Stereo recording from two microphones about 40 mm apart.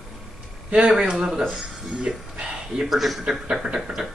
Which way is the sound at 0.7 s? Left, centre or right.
Right.